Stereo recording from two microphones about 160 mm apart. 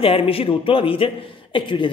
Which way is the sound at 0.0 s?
35° left (ahead or behind).